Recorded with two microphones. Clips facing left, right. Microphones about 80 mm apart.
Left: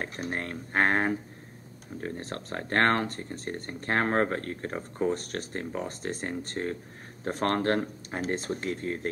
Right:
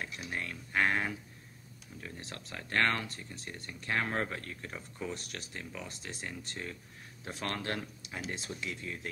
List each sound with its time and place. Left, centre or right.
0.0 s speech: left